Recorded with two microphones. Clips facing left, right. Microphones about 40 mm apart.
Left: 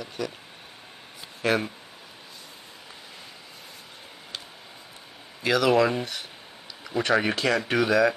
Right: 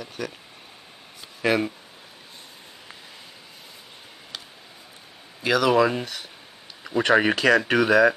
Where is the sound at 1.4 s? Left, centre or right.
Centre.